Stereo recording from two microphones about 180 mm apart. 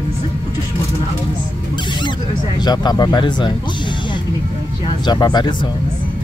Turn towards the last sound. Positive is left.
turn(degrees=25)  # may be behind; listen again after turning